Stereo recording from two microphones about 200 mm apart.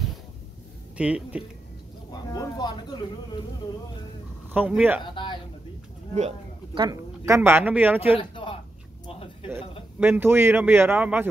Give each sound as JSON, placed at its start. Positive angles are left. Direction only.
{"t": 0.9, "sound": "speech", "side_deg": -5}
{"t": 2.0, "sound": "speech", "side_deg": 20}
{"t": 4.6, "sound": "speech", "side_deg": -5}
{"t": 5.0, "sound": "a man's voice", "side_deg": 25}
{"t": 6.1, "sound": "speech", "side_deg": -35}
{"t": 6.8, "sound": "speech", "side_deg": -15}
{"t": 8.0, "sound": "speech", "side_deg": 25}
{"t": 9.0, "sound": "a sound", "side_deg": 25}
{"t": 9.9, "sound": "speech", "side_deg": -10}